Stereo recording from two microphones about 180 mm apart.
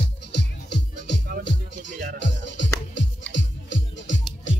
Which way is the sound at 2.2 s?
90° left.